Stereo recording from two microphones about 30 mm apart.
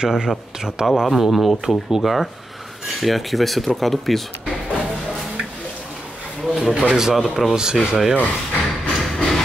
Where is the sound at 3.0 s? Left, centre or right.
Centre.